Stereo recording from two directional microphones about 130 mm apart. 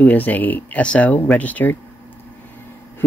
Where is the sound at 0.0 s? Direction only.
10° left (ahead or behind).